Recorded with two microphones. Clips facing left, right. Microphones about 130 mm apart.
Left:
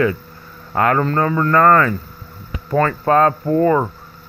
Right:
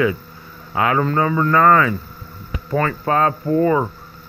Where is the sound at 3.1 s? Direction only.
45° left (ahead or behind).